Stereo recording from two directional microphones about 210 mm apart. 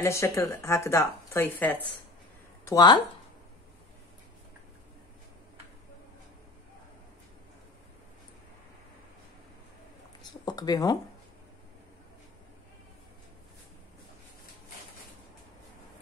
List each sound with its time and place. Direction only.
0.0 s speech: 15° left (ahead or behind)
10.4 s speech: 20° left (ahead or behind)